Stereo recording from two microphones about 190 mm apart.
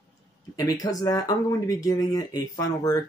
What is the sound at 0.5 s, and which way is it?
Speech, 20° left (ahead or behind).